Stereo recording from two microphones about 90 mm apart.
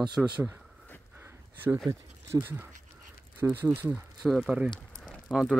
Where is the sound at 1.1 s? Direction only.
25° right (ahead or behind).